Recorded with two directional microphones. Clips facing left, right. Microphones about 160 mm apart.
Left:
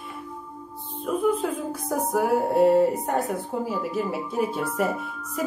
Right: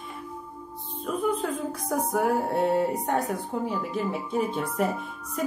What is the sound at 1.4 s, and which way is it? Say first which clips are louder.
Speech: left 2 dB; 5° left (ahead or behind).